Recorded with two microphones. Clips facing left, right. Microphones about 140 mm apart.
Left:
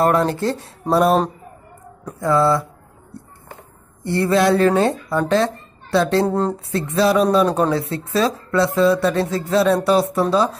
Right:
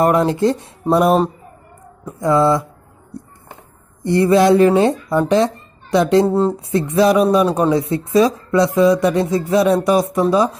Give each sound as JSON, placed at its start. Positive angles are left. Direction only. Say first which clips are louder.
{"t": 0.0, "sound": "speech", "louder": "right 3 dB", "side_deg": -15}
{"t": 0.9, "sound": "speech", "louder": "right 2 dB", "side_deg": -5}
{"t": 2.1, "sound": "speech", "louder": "right 2 dB", "side_deg": -20}
{"t": 4.0, "sound": "speech", "louder": "right 4 dB", "side_deg": -15}
{"t": 6.2, "sound": "speech", "louder": "right 4 dB", "side_deg": -5}
{"t": 6.5, "sound": "speech", "louder": "right 4 dB", "side_deg": -15}